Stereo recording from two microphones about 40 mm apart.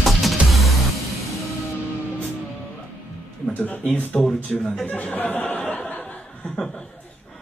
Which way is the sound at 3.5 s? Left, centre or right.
Left.